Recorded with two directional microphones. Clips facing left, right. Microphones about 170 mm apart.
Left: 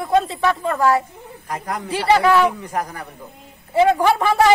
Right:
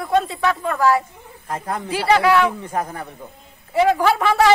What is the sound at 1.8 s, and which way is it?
A man's voice, centre (ahead or behind).